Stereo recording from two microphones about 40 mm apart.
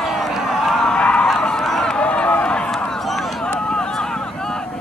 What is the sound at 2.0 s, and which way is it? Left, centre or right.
Run, left.